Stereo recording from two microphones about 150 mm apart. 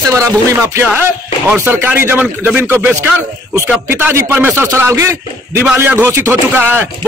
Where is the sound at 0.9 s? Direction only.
15° right (ahead or behind).